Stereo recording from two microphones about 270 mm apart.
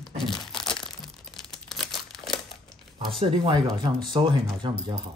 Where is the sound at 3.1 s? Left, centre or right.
Centre.